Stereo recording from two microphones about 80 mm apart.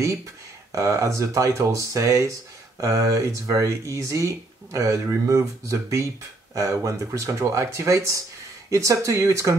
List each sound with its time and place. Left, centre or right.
0.7 s speech: right